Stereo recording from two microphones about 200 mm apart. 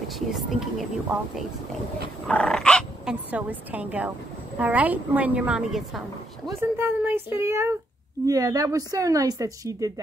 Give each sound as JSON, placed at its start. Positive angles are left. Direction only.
{"t": 0.3, "sound": "speech", "side_deg": 0}
{"t": 2.2, "sound": "speech", "side_deg": 5}
{"t": 3.3, "sound": "a woman's voice", "side_deg": -5}